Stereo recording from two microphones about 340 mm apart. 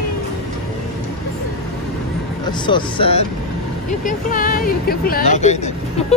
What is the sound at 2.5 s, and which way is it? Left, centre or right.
Speech, centre.